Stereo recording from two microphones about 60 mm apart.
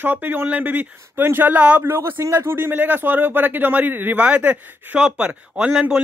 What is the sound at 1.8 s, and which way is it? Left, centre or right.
A man's voice, right.